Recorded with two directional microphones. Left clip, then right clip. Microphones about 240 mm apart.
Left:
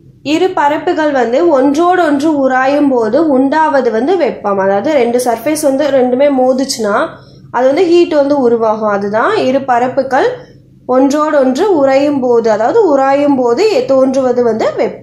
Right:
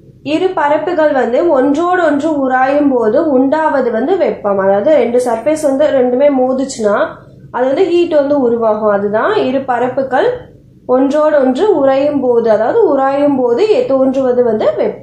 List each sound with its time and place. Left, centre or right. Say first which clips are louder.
0.3 s a woman's voice: left 1 dB; left